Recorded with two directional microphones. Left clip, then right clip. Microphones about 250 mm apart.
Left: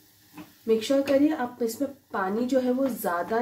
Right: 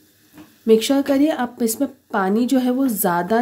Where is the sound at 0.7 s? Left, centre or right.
Right.